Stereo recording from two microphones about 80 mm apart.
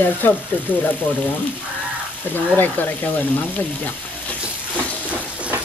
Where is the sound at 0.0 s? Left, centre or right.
Left.